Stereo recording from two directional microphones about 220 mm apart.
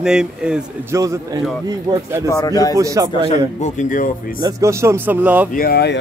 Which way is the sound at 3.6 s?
35° left (ahead or behind).